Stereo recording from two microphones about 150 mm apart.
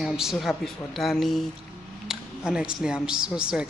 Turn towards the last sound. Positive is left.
turn(degrees=-5)  # may be behind; listen again after turning